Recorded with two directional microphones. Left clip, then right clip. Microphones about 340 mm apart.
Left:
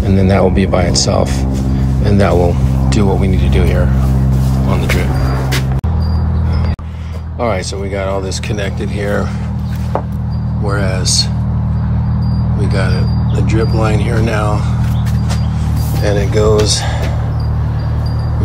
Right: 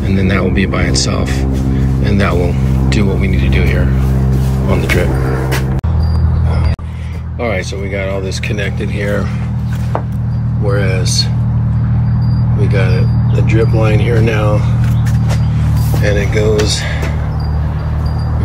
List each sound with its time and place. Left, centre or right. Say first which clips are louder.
0.1 s speech: left 3 dB; centre
7.4 s speech: left 1 dB; centre
10.7 s speech: even; centre
12.7 s speech: right 2 dB; centre
16.0 s speech: left 1 dB; centre